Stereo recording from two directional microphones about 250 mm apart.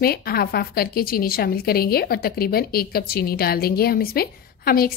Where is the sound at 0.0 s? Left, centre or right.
Left.